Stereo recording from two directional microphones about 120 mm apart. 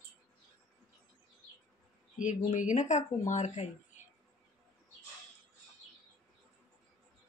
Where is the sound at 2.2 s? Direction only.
90° left.